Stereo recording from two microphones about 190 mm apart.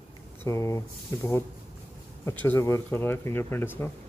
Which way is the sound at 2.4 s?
10° left (ahead or behind).